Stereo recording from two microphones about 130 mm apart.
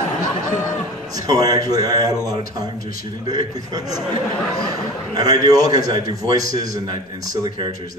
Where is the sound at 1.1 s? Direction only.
30° right (ahead or behind).